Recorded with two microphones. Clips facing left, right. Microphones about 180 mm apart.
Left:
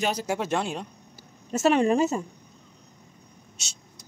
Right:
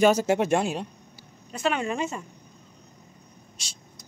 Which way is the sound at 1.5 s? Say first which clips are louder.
Left 6 dB; 40° left (ahead or behind).